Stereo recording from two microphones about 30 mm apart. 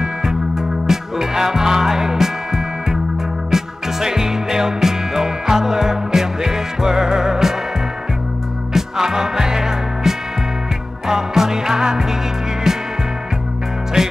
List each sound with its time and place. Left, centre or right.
0.0 s music: centre
8.7 s music: centre
14.0 s music: centre